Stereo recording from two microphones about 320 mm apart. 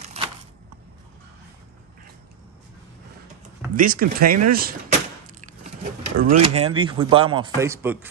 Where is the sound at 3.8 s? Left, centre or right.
Right.